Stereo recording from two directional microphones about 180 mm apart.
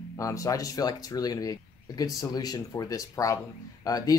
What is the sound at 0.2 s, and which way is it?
Speech, 20° left (ahead or behind).